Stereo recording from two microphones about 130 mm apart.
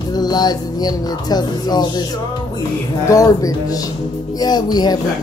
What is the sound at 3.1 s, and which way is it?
Speech, 25° left (ahead or behind).